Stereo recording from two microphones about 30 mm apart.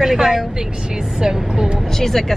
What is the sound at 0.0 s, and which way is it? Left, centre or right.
Speech, centre.